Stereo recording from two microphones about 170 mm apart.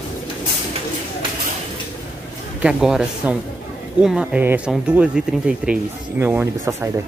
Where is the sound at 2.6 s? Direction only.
5° right (ahead or behind).